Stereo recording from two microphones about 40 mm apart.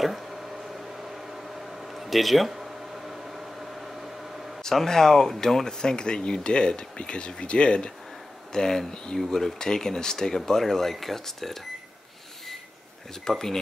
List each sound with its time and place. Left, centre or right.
2.0 s speech: centre
4.6 s speech: centre
8.5 s speech: centre
13.3 s speech: centre